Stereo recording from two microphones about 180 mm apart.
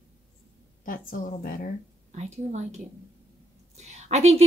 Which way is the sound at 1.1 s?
50° left (ahead or behind).